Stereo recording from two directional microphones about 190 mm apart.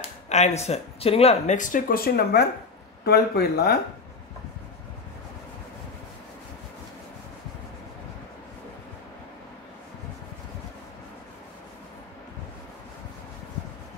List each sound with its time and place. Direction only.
0.3 s speech: 35° left (ahead or behind); by 3.7 s 60° left (ahead or behind)